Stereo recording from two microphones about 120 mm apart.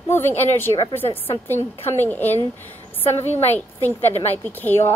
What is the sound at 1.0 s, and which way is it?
Speech, 50° left (ahead or behind).